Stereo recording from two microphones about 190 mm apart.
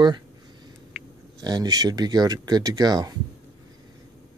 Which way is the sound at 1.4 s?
20° right (ahead or behind).